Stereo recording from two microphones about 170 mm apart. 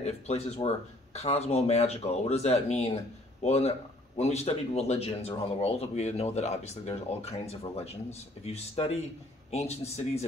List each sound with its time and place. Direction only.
0.0 s speech: 35° left (ahead or behind)